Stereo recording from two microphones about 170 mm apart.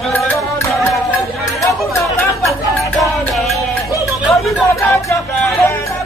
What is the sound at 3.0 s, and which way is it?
Music, centre (ahead or behind).